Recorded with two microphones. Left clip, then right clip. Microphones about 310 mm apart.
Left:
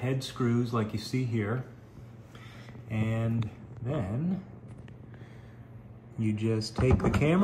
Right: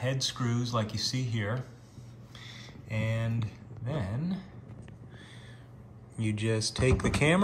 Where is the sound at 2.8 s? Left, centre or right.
Centre.